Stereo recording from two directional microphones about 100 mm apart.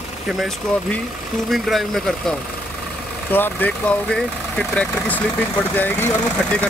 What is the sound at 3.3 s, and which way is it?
Speech, 20° left (ahead or behind).